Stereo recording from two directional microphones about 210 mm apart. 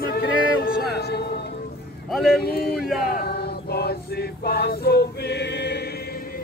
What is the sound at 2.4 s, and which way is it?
Speech, 45° left (ahead or behind).